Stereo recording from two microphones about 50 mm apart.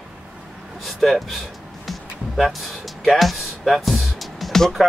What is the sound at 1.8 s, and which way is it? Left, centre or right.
Music, centre.